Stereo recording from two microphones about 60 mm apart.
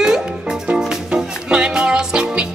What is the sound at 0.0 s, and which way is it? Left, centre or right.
Music, centre.